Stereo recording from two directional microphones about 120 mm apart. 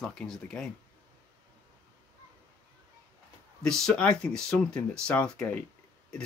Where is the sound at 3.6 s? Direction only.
5° left (ahead or behind).